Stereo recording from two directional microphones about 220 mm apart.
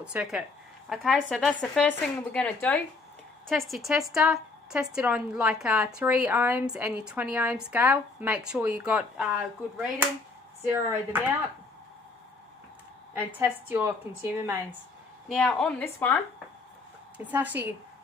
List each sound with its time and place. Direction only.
0.0 s a woman's voice: 5° right (ahead or behind)
13.1 s a woman's voice: 10° right (ahead or behind)
15.2 s a woman's voice: 5° left (ahead or behind)
17.2 s a woman's voice: 5° right (ahead or behind)